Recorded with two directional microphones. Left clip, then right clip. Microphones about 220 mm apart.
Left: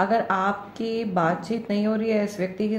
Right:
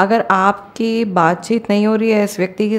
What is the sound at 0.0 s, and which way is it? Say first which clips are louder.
Speech: right 9 dB; 40° right (ahead or behind).